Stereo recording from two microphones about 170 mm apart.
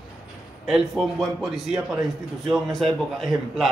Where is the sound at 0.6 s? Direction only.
Centre (ahead or behind).